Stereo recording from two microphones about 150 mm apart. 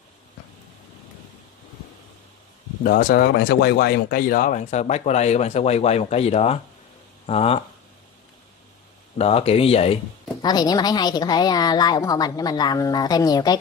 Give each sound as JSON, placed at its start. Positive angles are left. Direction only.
{"t": 2.8, "sound": "speech", "side_deg": 75}
{"t": 9.2, "sound": "speech", "side_deg": 40}
{"t": 10.4, "sound": "a woman's voice", "side_deg": 25}